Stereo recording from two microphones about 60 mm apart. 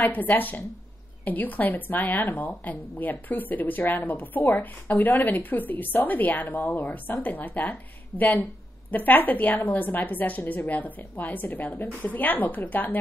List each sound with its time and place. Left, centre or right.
0.0 s a woman's voice: left